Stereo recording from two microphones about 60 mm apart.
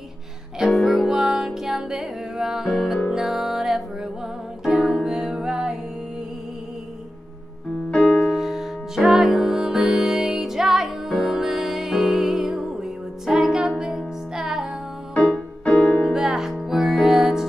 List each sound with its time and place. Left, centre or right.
0.7 s music: centre
7.9 s music: centre
8.2 s music: centre
15.3 s music: centre
16.1 s music: centre